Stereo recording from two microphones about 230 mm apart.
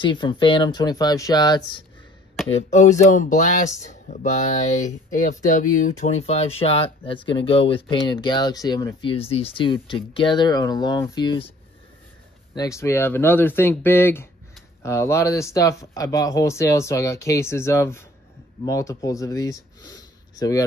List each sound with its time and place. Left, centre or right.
0.0 s speech: centre
2.5 s speech: left
12.5 s speech: centre